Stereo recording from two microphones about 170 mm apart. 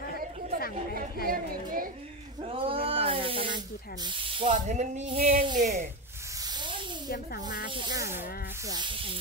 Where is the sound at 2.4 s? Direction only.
35° right (ahead or behind).